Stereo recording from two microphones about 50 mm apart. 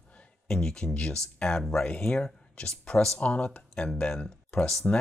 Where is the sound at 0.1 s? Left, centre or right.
Left.